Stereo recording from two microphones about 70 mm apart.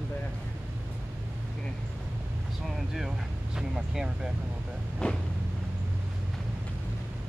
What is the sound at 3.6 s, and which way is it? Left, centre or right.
Speech, centre.